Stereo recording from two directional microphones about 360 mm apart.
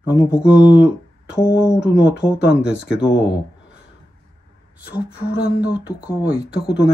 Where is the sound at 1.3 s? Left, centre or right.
Centre.